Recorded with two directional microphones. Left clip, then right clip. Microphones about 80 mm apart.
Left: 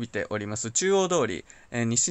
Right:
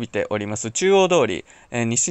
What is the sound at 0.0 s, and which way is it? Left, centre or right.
Speech, right.